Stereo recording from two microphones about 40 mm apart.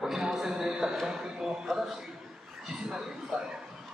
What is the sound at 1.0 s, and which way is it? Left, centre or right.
Speech, centre.